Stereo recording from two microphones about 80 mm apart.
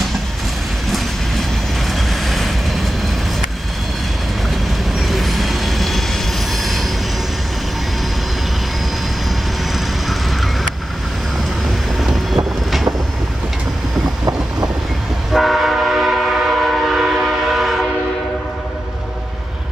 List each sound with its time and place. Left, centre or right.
1.9 s vehicle: centre
4.9 s train: centre
12.0 s vehicle: centre
14.0 s boat: right
15.3 s train: centre